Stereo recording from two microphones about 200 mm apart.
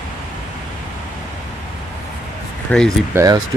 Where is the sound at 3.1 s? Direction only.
15° right (ahead or behind).